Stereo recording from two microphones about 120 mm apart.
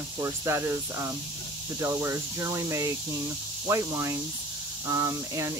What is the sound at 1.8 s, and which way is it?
Speech, 25° right (ahead or behind).